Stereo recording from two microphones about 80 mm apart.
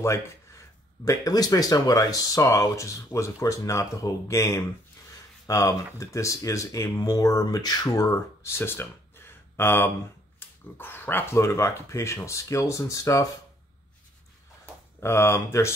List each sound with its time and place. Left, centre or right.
0.0 s speech: left
1.0 s speech: left
8.1 s speech: left
10.4 s dog: left
10.8 s speech: left
15.0 s speech: left